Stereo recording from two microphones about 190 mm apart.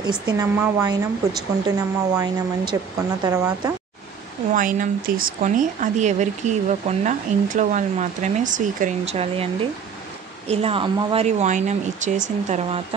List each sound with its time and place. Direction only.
0.3 s a woman's voice: 15° right (ahead or behind)
4.6 s speech: 45° right (ahead or behind)